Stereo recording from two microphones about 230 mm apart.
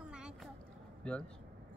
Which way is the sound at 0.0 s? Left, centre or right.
Centre.